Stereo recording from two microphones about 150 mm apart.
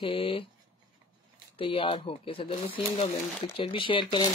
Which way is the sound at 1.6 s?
35° left (ahead or behind).